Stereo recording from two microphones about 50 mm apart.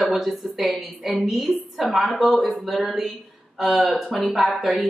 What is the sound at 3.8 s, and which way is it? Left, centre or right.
Speech, centre.